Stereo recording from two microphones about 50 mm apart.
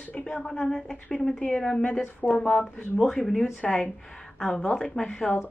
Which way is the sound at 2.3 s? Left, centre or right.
Left.